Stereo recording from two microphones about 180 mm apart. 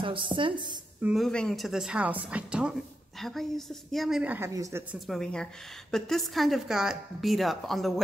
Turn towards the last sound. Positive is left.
turn(degrees=0)  # may be behind; listen again after turning